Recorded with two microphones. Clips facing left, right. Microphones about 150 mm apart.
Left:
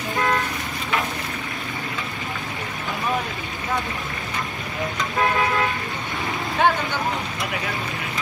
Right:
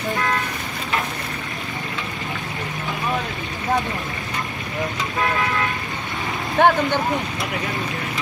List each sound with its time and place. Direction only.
6.6 s speech: 55° right (ahead or behind)